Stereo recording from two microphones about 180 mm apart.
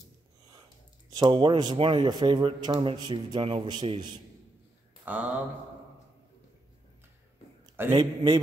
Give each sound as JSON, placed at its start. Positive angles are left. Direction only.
{"t": 1.1, "sound": "speech", "side_deg": -25}
{"t": 5.0, "sound": "speech", "side_deg": -10}
{"t": 7.9, "sound": "speech", "side_deg": -25}